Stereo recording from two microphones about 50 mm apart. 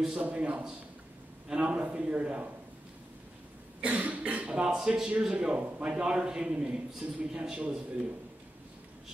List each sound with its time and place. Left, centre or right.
0.2 s a man's voice: right
3.8 s speech: right
4.6 s a man's voice: centre